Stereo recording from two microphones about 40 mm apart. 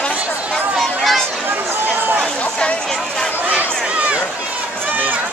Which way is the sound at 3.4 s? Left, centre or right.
Right.